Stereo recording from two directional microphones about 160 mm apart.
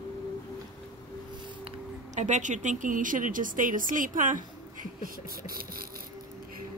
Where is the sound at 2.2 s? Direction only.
50° right (ahead or behind); by 5.9 s 65° right (ahead or behind).